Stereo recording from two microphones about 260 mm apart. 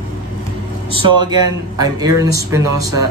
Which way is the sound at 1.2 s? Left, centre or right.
Centre.